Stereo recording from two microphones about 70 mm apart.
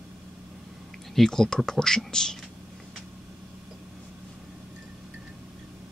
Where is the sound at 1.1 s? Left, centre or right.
Centre.